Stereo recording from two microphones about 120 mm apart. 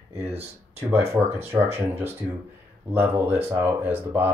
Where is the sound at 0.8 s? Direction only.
20° right (ahead or behind).